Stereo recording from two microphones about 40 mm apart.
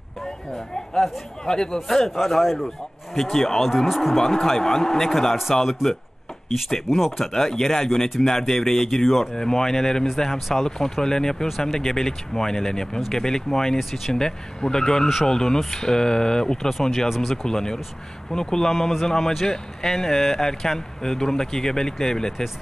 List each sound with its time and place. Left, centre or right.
0.2 s speech: centre
1.4 s speech: centre
1.9 s speech: centre
3.2 s speech: centre
4.2 s speech: centre
5.7 s speech: centre
7.3 s speech: centre
13.7 s speech: centre
14.1 s speech: centre
16.6 s speech: centre
17.5 s speech: centre
18.8 s speech: centre